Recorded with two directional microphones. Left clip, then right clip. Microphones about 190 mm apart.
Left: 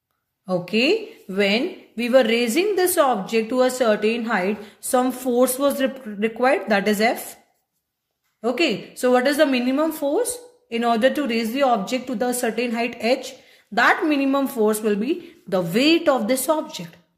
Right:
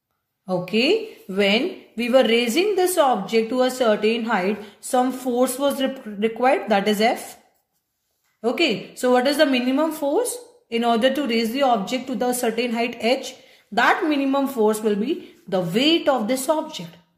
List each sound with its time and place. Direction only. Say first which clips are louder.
0.5 s a woman's voice: even; 20° left (ahead or behind)
8.4 s a woman's voice: even; 15° left (ahead or behind)